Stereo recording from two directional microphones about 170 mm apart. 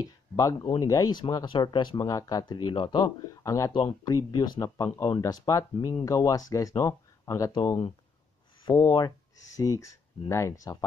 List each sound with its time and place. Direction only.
0.0 s speech: 20° left (ahead or behind)